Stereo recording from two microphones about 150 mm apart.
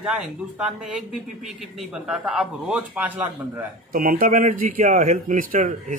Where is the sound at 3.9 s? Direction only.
70° right (ahead or behind).